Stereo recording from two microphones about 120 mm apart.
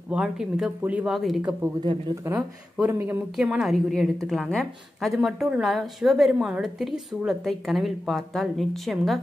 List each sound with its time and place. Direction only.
0.1 s speech: 5° right (ahead or behind)
1.1 s a woman's voice: centre (ahead or behind)
2.8 s speech: 15° right (ahead or behind)
3.3 s a woman's voice: 5° right (ahead or behind)